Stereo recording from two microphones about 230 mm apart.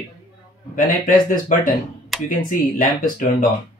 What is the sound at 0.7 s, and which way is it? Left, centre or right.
Speech, left.